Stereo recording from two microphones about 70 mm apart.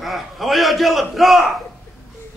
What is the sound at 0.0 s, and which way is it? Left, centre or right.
A man's voice, centre.